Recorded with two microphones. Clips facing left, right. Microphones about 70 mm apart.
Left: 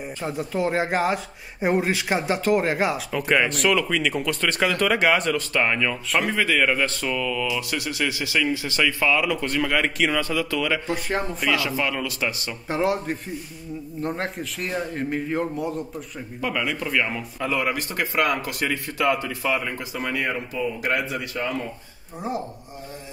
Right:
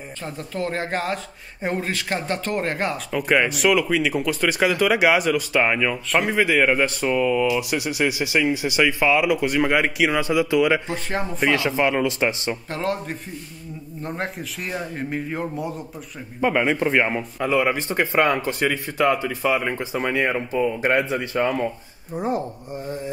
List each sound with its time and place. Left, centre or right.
0.2 s a man's voice: centre
11.1 s a man's voice: centre
11.3 s speech: right
12.6 s a man's voice: centre
16.3 s a man's voice: right
17.4 s speech: centre
18.7 s speech: centre
19.6 s speech: right